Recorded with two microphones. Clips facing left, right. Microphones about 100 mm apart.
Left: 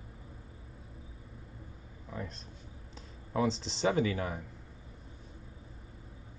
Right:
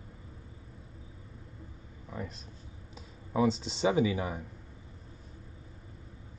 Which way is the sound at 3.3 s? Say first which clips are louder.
Right 3 dB; 5° right (ahead or behind).